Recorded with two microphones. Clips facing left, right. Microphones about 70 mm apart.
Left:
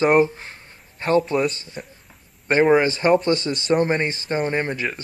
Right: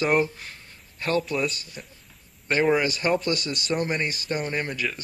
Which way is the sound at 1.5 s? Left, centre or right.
Left.